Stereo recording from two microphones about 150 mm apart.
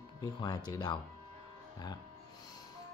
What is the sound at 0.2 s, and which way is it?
Speech, 25° left (ahead or behind).